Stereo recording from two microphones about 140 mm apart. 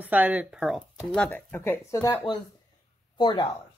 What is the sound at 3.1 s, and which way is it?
Speech, 35° left (ahead or behind).